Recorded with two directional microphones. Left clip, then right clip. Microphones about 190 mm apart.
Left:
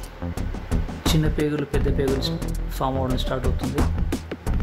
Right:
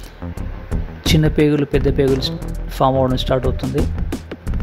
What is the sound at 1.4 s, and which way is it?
Speech, 30° right (ahead or behind).